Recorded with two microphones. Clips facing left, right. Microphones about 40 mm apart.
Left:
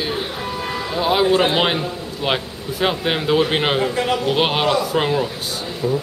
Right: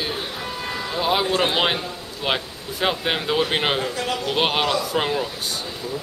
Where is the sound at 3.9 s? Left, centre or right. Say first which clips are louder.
Left 6 dB; left.